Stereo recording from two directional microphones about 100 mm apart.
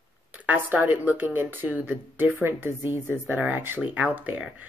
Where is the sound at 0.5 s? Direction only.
20° right (ahead or behind).